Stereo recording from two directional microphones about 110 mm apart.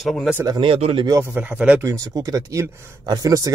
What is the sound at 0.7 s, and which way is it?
Speech, 65° right (ahead or behind).